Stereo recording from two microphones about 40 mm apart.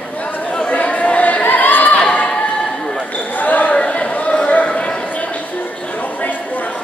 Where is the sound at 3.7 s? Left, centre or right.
Left.